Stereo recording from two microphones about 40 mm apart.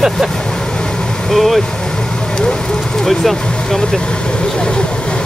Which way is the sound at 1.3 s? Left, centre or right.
Centre.